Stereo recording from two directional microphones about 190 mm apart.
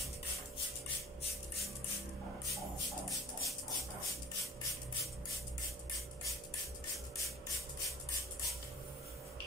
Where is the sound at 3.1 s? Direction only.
Centre (ahead or behind).